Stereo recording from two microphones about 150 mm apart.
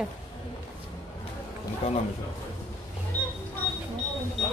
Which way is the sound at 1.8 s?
40° left (ahead or behind).